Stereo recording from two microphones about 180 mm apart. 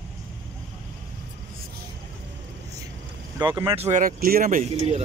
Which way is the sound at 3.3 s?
20° right (ahead or behind).